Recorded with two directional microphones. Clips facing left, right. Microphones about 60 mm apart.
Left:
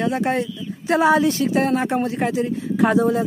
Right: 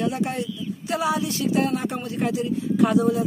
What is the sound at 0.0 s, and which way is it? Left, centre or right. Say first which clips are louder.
Speech: left 4 dB; left.